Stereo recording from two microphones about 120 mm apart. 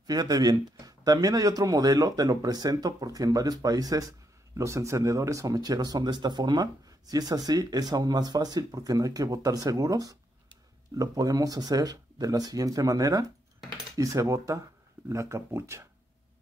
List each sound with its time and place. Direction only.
0.0 s speech: 35° right (ahead or behind)